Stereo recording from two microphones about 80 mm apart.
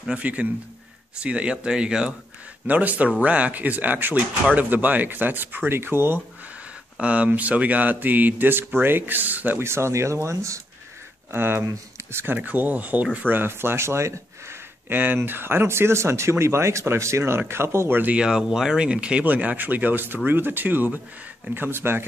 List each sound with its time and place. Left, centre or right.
0.0 s speech: centre
7.0 s speech: centre
9.7 s speech: right
11.3 s speech: right
14.9 s speech: right
18.1 s speech: centre; by 22.0 s right